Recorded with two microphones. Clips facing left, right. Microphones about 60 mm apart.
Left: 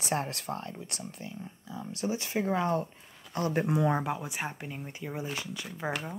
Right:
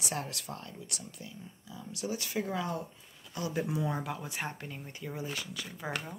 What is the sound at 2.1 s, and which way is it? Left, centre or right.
Speech, left.